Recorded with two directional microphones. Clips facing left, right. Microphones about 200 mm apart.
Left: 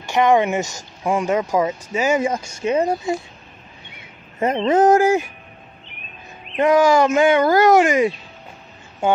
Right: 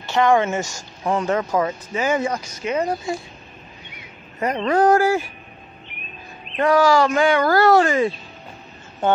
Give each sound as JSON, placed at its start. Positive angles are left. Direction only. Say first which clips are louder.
{"t": 0.0, "sound": "speech", "louder": "left 1 dB", "side_deg": 20}
{"t": 2.2, "sound": "speech", "louder": "left 3 dB", "side_deg": 25}
{"t": 6.4, "sound": "speech", "louder": "left 2 dB", "side_deg": 20}